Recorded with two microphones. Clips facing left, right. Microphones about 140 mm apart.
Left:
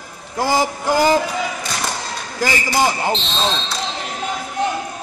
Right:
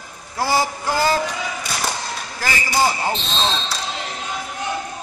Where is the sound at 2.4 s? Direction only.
20° left (ahead or behind).